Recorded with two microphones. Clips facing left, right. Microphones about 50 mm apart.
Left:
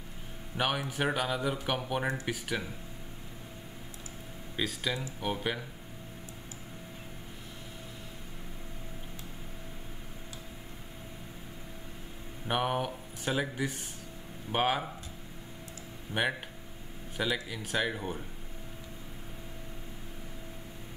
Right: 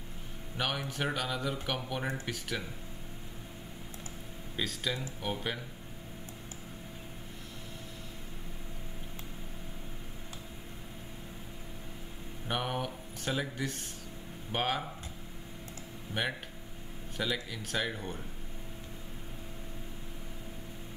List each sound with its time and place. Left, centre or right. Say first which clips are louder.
0.6 s speech: left 3 dB; centre
4.6 s speech: left 2 dB; centre
12.4 s speech: left 4 dB; centre
16.1 s speech: left 4 dB; centre